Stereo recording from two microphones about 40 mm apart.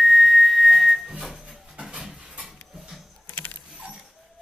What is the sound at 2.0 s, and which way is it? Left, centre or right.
Dog, centre.